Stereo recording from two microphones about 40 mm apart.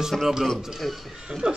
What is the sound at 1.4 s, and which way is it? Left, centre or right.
Speech, right.